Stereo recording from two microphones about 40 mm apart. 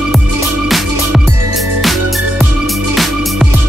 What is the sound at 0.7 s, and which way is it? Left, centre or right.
Music, centre.